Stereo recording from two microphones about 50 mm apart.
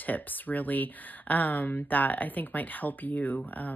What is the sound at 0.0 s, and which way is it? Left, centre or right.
Speech, left.